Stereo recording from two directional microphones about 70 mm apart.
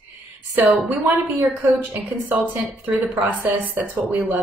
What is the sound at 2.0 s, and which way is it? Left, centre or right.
Speech, right.